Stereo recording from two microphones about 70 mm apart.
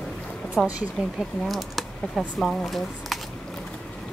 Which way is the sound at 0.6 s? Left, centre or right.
Centre.